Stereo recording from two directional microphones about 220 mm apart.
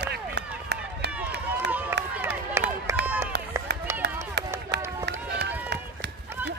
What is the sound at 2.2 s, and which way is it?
Run, 10° right (ahead or behind).